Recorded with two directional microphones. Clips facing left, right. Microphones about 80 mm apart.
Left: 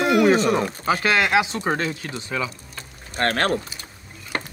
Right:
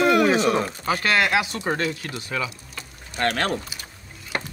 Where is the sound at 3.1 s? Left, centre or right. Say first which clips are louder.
Left 2 dB; left.